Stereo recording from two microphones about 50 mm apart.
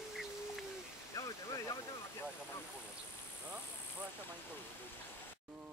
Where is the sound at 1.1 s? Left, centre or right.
Left.